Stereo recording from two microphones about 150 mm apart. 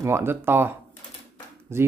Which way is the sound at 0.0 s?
15° right (ahead or behind).